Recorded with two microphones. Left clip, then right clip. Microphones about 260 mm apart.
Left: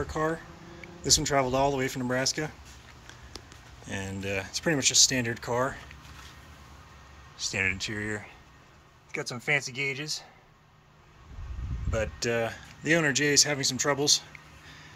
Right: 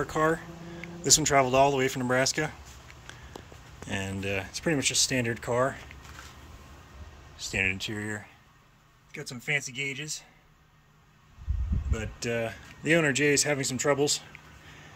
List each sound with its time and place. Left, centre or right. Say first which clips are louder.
0.0 s speech: right 4 dB; centre
3.9 s a man's voice: right 1 dB; centre
7.3 s speech: even; centre
9.1 s speech: left 3 dB; centre
11.9 s a man's voice: left 4 dB; centre